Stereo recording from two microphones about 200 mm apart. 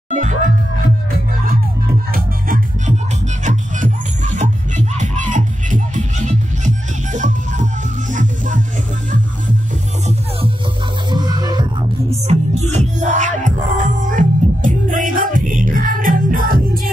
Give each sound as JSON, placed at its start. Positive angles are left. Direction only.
{"t": 0.1, "sound": "music", "side_deg": -35}
{"t": 2.1, "sound": "music", "side_deg": -45}
{"t": 11.1, "sound": "music", "side_deg": -20}
{"t": 12.3, "sound": "music", "side_deg": -35}